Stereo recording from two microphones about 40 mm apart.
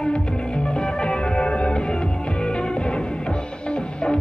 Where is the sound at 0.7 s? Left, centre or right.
Left.